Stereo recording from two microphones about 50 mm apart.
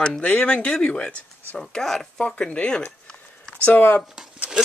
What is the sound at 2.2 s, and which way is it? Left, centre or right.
Speech, left.